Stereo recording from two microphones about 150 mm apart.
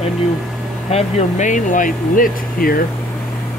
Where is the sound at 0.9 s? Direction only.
55° left (ahead or behind).